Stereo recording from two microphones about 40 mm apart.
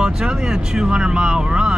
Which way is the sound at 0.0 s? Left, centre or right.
Centre.